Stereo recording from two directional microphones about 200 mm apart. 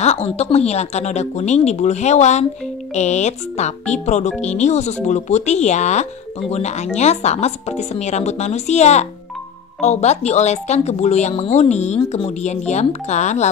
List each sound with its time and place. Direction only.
0.0 s a woman's voice: 30° left (ahead or behind)